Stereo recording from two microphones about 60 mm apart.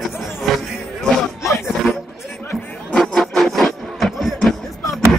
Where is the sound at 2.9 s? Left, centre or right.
Centre.